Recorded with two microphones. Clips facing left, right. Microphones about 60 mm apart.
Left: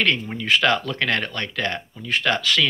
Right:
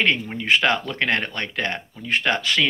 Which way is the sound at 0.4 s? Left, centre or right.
Right.